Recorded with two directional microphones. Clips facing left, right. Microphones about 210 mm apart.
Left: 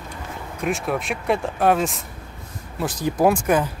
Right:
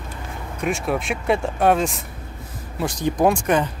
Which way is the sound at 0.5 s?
Centre (ahead or behind).